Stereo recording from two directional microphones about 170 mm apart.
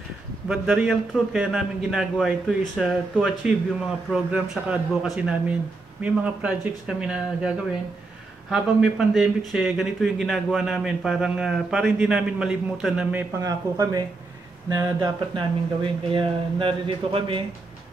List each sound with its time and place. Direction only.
0.5 s speech: 5° right (ahead or behind)
13.4 s speech: 20° right (ahead or behind)